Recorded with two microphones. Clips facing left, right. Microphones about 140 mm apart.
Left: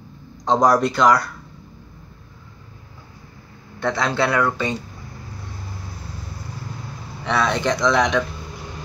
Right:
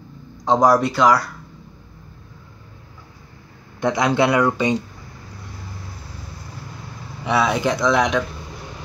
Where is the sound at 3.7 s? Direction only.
15° right (ahead or behind).